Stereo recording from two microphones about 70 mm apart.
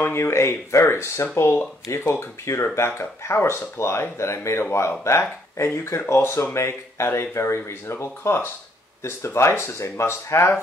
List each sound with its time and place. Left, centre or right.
0.0 s speech: left